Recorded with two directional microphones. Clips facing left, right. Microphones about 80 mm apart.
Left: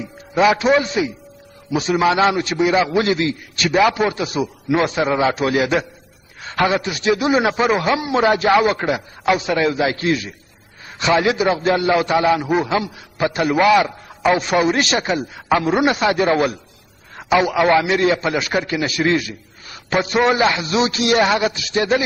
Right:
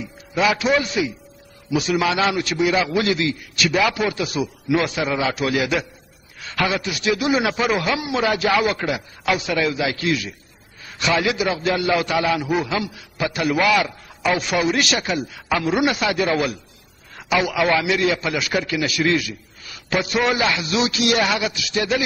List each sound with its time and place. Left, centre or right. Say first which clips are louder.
0.0 s a man's voice: left 5 dB; left